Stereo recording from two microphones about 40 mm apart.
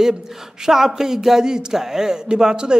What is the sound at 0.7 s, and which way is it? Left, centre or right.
A man's voice, centre.